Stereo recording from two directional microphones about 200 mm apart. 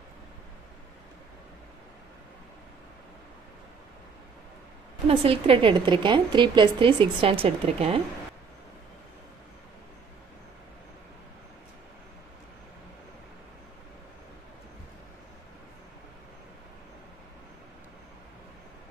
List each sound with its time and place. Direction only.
5.0 s a woman's voice: 30° right (ahead or behind)